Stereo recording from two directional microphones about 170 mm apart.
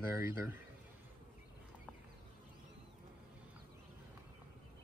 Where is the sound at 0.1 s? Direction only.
15° right (ahead or behind).